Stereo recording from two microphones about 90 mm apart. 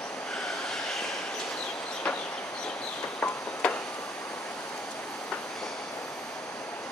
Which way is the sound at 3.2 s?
15° left (ahead or behind).